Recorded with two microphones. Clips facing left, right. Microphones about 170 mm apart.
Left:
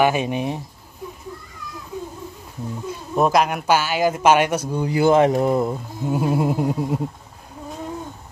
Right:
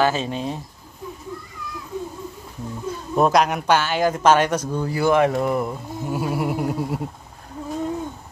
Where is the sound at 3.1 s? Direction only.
Centre (ahead or behind); by 7.0 s 20° left (ahead or behind).